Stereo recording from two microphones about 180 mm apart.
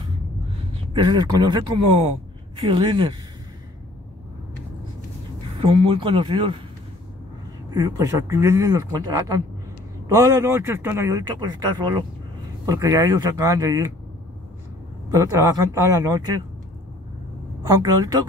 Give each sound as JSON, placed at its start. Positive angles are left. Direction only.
{"t": 0.9, "sound": "speech", "side_deg": -25}
{"t": 5.9, "sound": "speech", "side_deg": -30}
{"t": 7.7, "sound": "a man's voice", "side_deg": -15}
{"t": 15.0, "sound": "speech", "side_deg": -20}
{"t": 17.6, "sound": "speech", "side_deg": -20}